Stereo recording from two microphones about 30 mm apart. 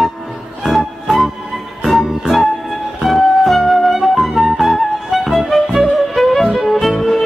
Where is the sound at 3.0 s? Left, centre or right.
Centre.